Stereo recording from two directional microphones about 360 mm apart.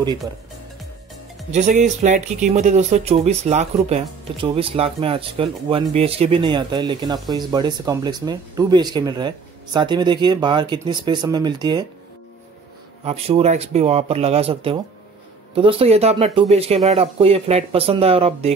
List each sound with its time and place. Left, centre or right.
1.5 s speech: centre
13.0 s speech: centre